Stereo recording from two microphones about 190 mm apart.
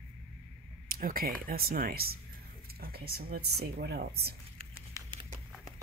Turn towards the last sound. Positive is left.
turn(degrees=-25)  # may be behind; listen again after turning